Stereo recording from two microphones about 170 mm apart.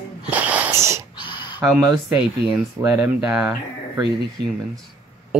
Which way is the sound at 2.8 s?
10° right (ahead or behind).